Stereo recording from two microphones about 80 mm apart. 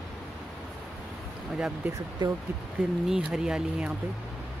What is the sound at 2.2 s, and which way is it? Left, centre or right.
Speech, right.